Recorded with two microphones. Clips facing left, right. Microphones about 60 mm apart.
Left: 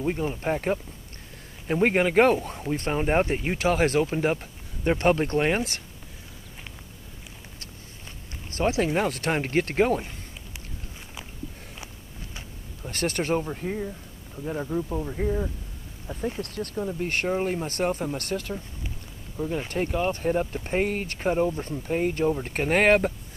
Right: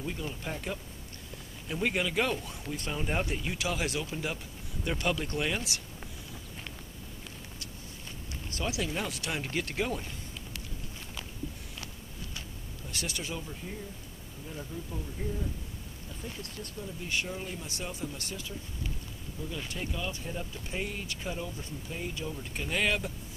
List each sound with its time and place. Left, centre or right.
0.0 s speech: left
8.5 s speech: left
12.8 s speech: left
19.3 s speech: left